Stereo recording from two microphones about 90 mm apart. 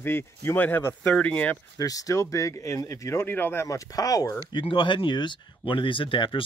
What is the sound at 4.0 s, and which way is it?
Speech, 40° left (ahead or behind).